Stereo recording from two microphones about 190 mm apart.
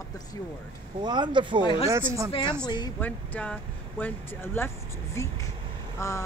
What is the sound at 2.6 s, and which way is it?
Speech, 20° left (ahead or behind).